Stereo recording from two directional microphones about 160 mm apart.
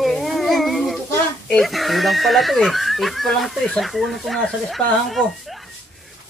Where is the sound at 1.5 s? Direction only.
Centre (ahead or behind).